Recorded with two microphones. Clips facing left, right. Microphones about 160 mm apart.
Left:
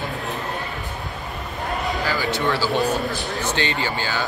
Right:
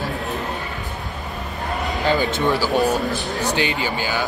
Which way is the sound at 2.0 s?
20° right (ahead or behind).